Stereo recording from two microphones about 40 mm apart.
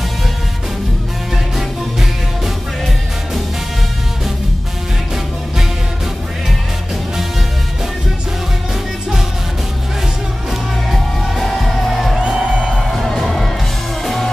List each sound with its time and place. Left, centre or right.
1.3 s music: centre
10.9 s music: centre
12.2 s music: right
12.9 s music: centre